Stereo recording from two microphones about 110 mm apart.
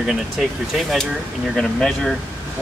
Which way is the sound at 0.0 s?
5° right (ahead or behind).